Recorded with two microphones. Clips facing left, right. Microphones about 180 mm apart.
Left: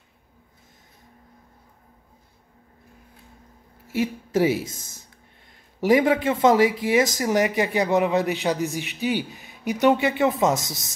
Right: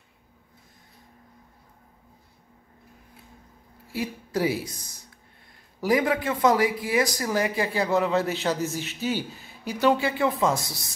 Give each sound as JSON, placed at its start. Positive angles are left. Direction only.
{"t": 3.9, "sound": "speech", "side_deg": 25}